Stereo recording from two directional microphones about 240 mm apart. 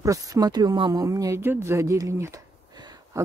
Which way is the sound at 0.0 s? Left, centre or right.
Centre.